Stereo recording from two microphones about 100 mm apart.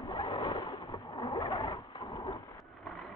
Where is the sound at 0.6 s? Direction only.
40° left (ahead or behind).